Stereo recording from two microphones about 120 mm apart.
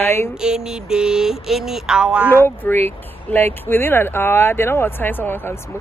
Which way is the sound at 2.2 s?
20° left (ahead or behind).